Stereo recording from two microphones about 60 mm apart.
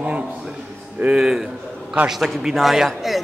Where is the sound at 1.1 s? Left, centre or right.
Centre.